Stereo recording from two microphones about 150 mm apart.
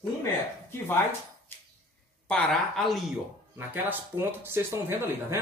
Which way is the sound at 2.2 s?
5° left (ahead or behind).